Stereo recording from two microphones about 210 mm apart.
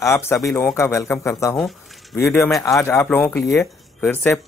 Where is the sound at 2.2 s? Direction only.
10° left (ahead or behind).